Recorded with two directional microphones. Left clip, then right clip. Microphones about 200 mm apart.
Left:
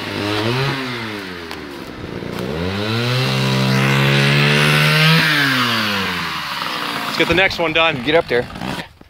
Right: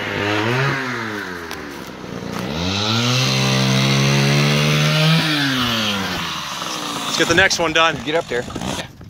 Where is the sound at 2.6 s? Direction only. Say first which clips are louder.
Right 3 dB; 30° left (ahead or behind).